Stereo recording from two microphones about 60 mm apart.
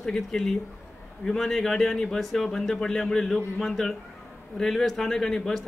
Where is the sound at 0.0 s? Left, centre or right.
Centre.